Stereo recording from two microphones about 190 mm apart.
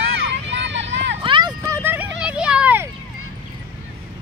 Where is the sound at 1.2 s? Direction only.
25° right (ahead or behind).